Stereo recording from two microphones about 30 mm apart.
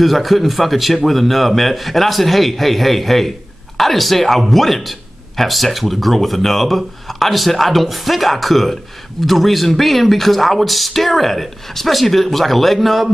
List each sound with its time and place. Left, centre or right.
0.0 s a man's voice: centre